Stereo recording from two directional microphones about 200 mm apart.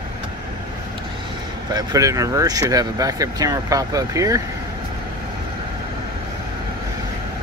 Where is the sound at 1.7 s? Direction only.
20° right (ahead or behind).